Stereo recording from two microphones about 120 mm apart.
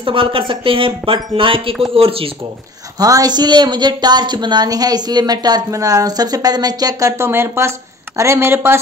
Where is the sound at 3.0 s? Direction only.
30° right (ahead or behind).